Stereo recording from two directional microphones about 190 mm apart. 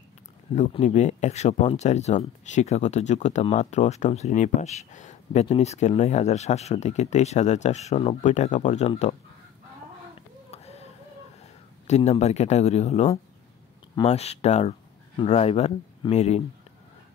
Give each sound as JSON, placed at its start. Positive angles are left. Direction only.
{"t": 0.6, "sound": "speech", "side_deg": 40}
{"t": 10.5, "sound": "a sound", "side_deg": 35}
{"t": 11.9, "sound": "speech", "side_deg": 35}